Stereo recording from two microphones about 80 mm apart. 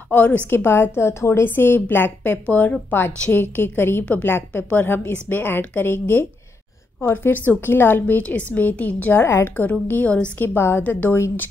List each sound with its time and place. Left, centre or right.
0.1 s a woman's voice: left
2.3 s a woman's voice: centre
9.2 s a woman's voice: left
9.7 s a woman's voice: centre